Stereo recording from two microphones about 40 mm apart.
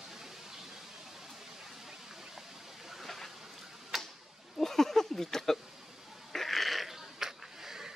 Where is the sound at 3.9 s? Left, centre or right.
Centre.